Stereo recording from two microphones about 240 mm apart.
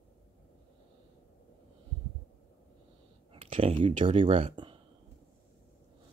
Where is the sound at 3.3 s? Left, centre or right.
Right.